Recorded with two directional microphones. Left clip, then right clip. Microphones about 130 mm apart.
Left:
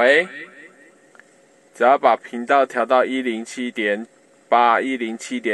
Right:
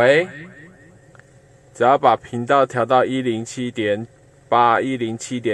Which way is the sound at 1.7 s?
30° right (ahead or behind).